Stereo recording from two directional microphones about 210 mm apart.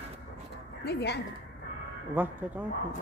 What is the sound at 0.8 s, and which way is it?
Speech, 50° left (ahead or behind).